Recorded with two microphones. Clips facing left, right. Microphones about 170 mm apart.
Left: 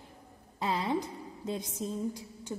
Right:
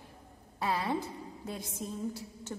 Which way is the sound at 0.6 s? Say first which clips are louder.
Left 1 dB; 20° left (ahead or behind).